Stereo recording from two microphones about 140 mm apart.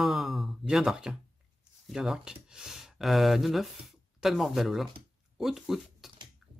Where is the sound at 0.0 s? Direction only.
Centre (ahead or behind).